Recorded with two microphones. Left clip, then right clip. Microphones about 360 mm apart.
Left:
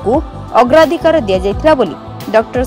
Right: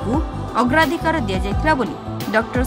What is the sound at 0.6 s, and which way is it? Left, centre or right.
Speech, centre.